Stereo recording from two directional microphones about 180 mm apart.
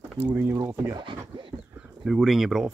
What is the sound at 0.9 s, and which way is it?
Speech, 25° right (ahead or behind).